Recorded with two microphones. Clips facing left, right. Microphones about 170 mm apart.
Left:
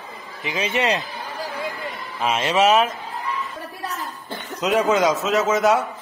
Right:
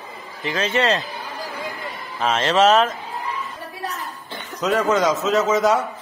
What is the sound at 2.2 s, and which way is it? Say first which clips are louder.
Speech: right 2 dB; 10° left (ahead or behind).